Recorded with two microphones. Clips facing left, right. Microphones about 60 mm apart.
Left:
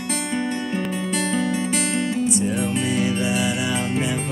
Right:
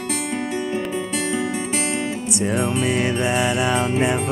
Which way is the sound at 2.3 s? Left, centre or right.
Right.